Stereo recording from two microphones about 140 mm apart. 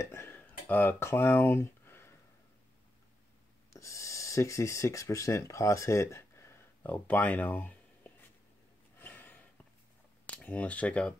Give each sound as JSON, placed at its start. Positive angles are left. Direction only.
{"t": 0.0, "sound": "dishes", "side_deg": 20}
{"t": 3.7, "sound": "speech", "side_deg": 20}
{"t": 8.9, "sound": "a sound", "side_deg": 15}
{"t": 10.2, "sound": "speech", "side_deg": 10}